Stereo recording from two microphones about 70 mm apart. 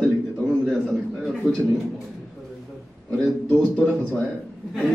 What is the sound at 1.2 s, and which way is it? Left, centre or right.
Speech, centre.